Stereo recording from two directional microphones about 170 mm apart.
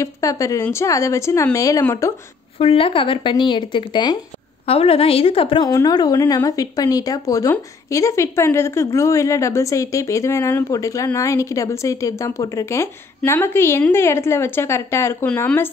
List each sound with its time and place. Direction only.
0.0 s a woman's voice: 20° left (ahead or behind)
2.6 s a woman's voice: 35° left (ahead or behind); by 15.7 s 15° left (ahead or behind)